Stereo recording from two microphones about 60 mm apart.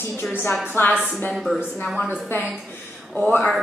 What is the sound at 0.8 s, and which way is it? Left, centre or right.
Speech, left.